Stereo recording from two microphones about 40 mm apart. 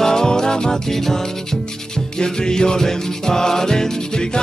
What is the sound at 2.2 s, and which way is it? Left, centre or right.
Music, centre.